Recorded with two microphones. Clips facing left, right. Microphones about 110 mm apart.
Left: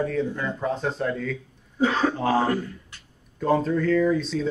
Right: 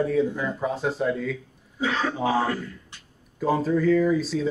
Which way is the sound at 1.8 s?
45° left (ahead or behind).